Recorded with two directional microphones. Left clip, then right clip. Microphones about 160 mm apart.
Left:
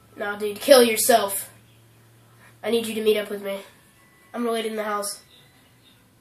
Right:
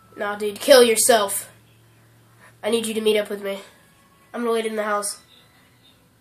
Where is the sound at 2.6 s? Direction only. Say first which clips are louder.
Right 2 dB; 50° right (ahead or behind).